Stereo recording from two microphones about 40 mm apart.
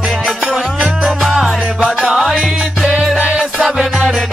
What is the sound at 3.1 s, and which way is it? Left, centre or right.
Music, right.